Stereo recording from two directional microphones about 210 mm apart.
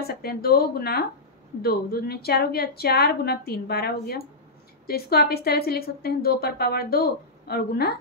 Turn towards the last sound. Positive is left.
turn(degrees=45)  # may be behind; listen again after turning